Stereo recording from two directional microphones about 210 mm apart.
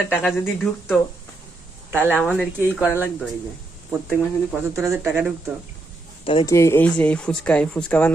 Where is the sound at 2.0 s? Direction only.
5° left (ahead or behind).